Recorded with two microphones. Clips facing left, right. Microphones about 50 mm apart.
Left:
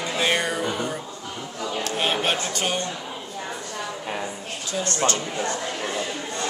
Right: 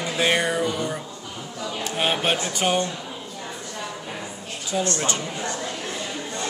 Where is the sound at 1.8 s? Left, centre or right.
Centre.